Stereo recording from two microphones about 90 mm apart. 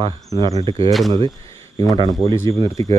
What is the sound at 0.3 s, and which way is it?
Speech, 60° right (ahead or behind).